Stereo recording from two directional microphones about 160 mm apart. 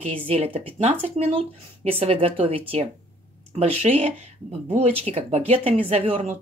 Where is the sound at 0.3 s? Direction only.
35° right (ahead or behind).